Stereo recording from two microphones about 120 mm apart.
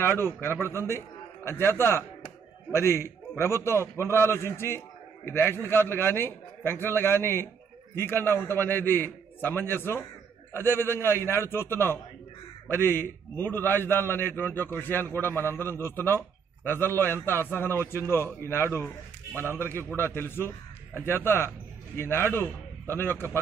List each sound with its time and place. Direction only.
0.0 s a man's voice: 20° left (ahead or behind)